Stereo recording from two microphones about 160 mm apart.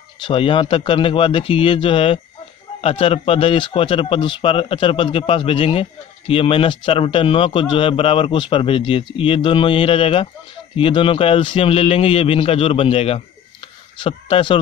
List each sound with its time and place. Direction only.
0.2 s speech: 35° left (ahead or behind)